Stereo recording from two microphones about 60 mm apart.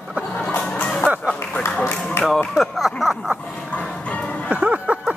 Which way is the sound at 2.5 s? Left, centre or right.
Centre.